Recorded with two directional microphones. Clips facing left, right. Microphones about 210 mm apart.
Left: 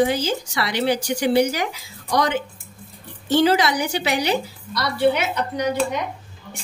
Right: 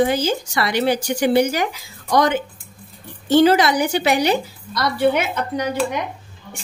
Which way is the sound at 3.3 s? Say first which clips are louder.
Right 4 dB; 50° right (ahead or behind).